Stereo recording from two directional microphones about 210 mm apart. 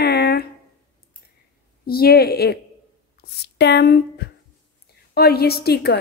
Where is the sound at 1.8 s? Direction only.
45° left (ahead or behind).